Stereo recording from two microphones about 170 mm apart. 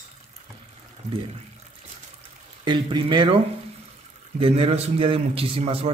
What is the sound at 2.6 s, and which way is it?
Speech, 30° right (ahead or behind).